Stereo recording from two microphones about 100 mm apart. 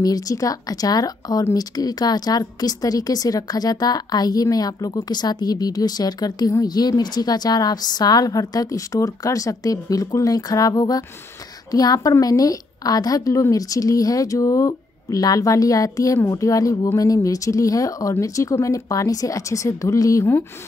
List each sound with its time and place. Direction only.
0.0 s speech: 35° left (ahead or behind)